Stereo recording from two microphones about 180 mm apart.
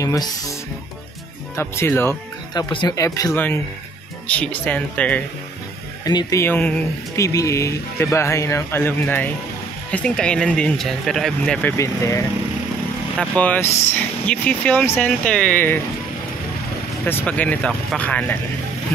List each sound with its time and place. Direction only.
0.0 s speech: 20° left (ahead or behind)
1.6 s speech: 15° left (ahead or behind)
6.0 s speech: 20° left (ahead or behind); by 11.7 s 5° left (ahead or behind)
11.7 s speech: 15° left (ahead or behind)
13.2 s speech: 5° left (ahead or behind)
17.0 s speech: 10° left (ahead or behind)